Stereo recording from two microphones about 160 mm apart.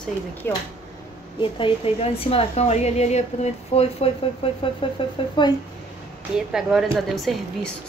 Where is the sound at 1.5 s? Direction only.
35° left (ahead or behind).